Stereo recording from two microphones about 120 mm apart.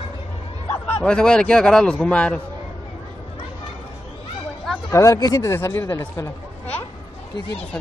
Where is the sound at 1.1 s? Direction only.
10° left (ahead or behind).